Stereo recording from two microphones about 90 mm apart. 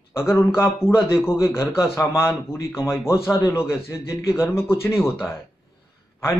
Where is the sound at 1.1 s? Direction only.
30° left (ahead or behind).